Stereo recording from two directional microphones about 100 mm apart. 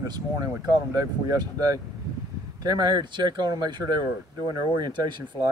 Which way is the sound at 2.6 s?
45° right (ahead or behind).